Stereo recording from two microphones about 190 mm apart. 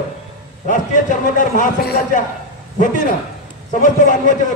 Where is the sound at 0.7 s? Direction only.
45° left (ahead or behind).